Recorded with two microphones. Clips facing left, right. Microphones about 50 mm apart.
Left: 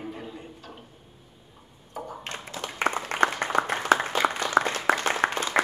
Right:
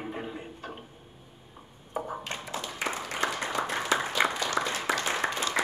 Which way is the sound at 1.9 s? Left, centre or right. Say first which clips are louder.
Right 3 dB; right.